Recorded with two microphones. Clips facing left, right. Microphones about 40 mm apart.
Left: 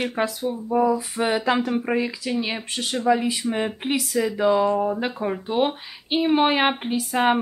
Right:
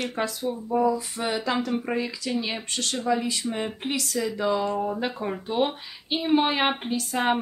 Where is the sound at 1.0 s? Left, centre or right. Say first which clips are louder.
Left 5 dB; centre.